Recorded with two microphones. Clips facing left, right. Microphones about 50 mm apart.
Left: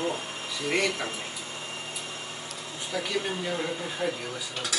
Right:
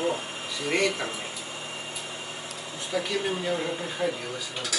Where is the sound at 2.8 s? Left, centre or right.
Centre.